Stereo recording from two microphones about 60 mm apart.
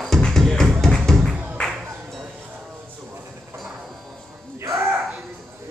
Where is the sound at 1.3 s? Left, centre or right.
Right.